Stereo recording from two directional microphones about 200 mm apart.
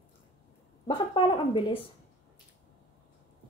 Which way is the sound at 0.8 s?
25° left (ahead or behind).